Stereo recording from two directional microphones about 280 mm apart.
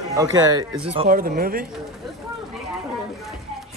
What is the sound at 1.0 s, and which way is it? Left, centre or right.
Speech, right.